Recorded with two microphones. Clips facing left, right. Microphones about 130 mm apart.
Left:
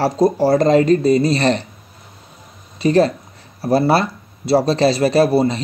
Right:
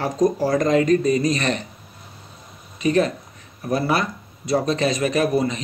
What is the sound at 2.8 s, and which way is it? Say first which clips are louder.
Speech: left 5 dB; 35° left (ahead or behind).